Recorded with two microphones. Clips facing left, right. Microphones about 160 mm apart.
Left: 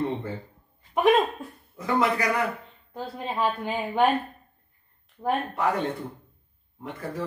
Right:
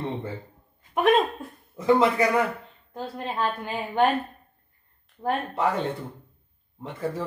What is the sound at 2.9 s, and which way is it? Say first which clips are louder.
A woman's voice: even; 5° left (ahead or behind).